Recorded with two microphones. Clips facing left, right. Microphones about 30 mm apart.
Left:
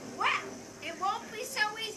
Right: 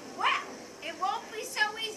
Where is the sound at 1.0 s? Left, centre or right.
Centre.